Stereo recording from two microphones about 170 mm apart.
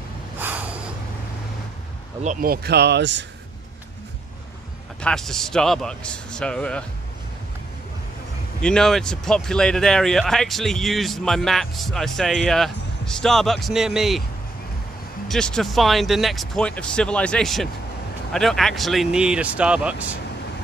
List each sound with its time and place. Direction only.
0.4 s snort: 10° right (ahead or behind)
2.2 s speech: 60° right (ahead or behind); by 3.3 s 90° right
5.0 s speech: 5° left (ahead or behind)
8.6 s speech: 5° left (ahead or behind)
15.2 s speech: 5° left (ahead or behind)